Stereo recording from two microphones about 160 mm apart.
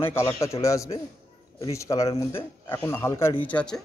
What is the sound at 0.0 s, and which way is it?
A man's voice, 15° left (ahead or behind).